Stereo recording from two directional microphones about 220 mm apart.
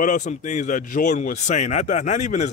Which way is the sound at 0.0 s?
35° left (ahead or behind).